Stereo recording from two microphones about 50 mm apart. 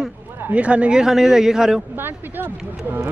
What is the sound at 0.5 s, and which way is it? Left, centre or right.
Speech, right.